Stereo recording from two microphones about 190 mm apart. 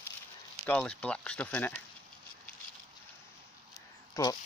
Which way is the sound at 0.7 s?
5° left (ahead or behind).